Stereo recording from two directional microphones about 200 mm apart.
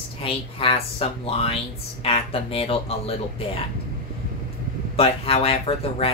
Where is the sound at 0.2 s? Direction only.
30° left (ahead or behind).